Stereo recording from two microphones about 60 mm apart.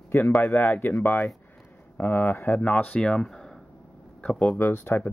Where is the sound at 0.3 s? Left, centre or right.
Left.